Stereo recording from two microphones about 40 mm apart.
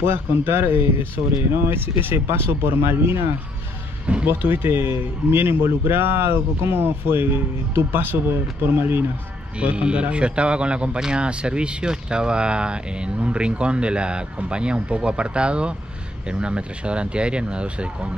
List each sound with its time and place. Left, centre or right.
0.5 s speech: right
4.3 s a man's voice: right
9.6 s speech: right